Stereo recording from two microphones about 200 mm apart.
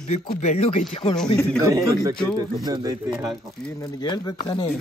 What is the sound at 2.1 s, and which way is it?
Speech, 5° left (ahead or behind).